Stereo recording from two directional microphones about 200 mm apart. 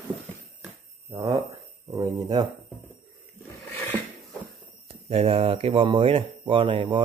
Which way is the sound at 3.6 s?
10° left (ahead or behind).